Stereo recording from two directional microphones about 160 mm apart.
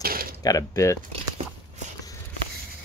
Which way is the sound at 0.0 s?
65° right (ahead or behind).